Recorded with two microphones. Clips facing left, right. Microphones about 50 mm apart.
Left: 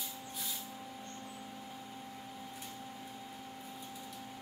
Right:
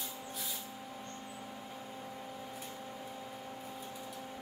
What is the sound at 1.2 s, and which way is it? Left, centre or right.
Vehicle, centre.